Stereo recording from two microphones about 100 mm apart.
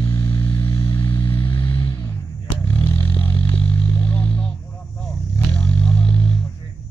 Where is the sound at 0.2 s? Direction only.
25° left (ahead or behind).